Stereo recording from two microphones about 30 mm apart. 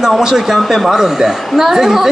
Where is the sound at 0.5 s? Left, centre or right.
Centre.